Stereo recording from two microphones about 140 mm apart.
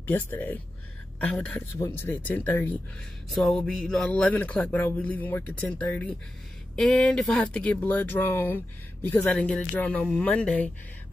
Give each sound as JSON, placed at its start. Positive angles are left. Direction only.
{"t": 0.0, "sound": "speech", "side_deg": 15}
{"t": 1.8, "sound": "speech", "side_deg": 15}
{"t": 3.3, "sound": "speech", "side_deg": 0}